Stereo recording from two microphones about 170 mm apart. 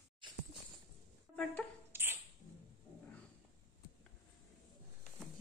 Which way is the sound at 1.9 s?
15° right (ahead or behind).